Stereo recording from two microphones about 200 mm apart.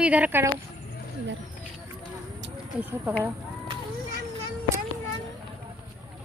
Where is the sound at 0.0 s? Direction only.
5° right (ahead or behind).